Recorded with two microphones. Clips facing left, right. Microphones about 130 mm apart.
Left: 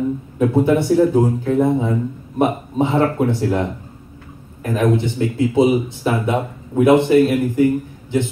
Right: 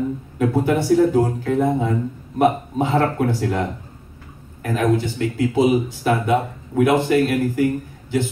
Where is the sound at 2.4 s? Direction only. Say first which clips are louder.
Even; 20° left (ahead or behind).